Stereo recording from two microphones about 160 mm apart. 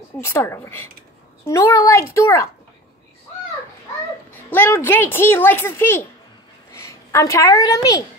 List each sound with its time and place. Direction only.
0.2 s a child's voice: 15° left (ahead or behind)
4.3 s speech: 10° left (ahead or behind)